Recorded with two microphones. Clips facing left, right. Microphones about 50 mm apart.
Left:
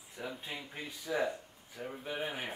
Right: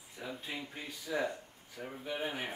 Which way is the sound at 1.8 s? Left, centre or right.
Centre.